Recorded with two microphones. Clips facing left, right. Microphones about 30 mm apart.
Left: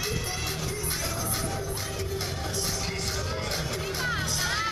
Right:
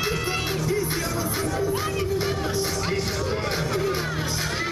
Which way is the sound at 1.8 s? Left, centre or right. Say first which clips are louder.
Right 8 dB; right.